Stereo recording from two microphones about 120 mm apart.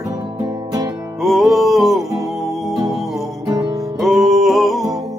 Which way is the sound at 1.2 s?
Centre (ahead or behind).